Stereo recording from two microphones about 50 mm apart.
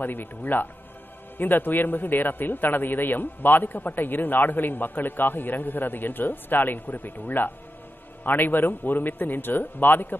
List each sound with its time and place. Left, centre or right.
0.0 s a man's voice: left